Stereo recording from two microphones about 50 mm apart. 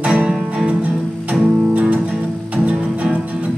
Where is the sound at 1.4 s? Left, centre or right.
Right.